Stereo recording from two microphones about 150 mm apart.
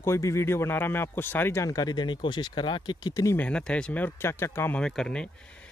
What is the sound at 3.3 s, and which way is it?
Speech, 10° left (ahead or behind).